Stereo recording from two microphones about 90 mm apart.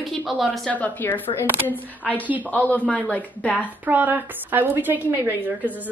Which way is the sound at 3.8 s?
20° right (ahead or behind).